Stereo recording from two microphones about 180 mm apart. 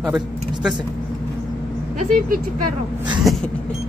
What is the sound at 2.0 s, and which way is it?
Speech, 50° right (ahead or behind).